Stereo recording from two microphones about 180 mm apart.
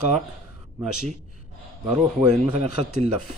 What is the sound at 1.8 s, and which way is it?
Speech, centre (ahead or behind).